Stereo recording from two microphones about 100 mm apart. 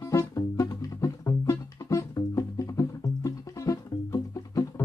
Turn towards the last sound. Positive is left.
turn(degrees=30)  # may be behind; listen again after turning